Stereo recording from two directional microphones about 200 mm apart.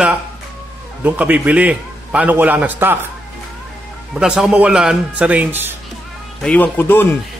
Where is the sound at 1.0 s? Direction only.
10° right (ahead or behind).